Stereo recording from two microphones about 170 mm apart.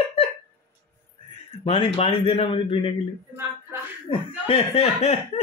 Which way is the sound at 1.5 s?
30° left (ahead or behind).